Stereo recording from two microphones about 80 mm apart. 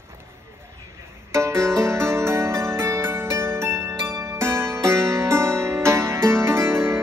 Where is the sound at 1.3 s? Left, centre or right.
Right.